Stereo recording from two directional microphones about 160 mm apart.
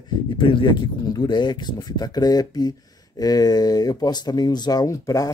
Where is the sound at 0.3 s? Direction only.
30° left (ahead or behind).